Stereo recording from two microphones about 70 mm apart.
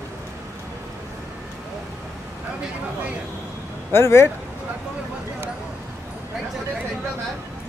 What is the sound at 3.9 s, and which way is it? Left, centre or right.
Speech, left.